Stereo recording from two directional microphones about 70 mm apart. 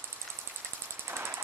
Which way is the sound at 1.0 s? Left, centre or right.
Right.